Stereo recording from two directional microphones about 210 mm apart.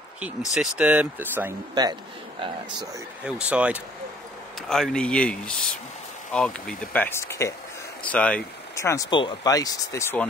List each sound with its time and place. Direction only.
0.6 s speech: 5° right (ahead or behind)
3.3 s speech: 5° right (ahead or behind); by 10.2 s 15° left (ahead or behind)